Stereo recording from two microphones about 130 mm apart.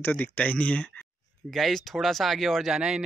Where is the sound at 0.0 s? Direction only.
15° left (ahead or behind).